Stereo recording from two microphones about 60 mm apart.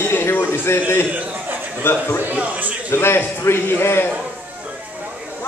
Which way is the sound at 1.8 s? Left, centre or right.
Left.